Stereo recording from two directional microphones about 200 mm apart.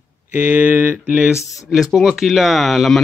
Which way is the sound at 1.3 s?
15° left (ahead or behind).